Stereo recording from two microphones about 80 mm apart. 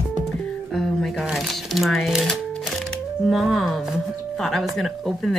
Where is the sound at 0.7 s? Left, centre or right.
Centre.